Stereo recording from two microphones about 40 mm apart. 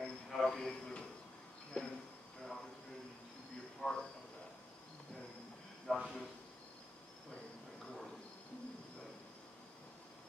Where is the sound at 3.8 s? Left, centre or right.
Centre.